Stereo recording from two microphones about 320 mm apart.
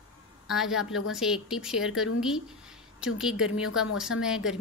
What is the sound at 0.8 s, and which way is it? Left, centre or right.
Speech, left.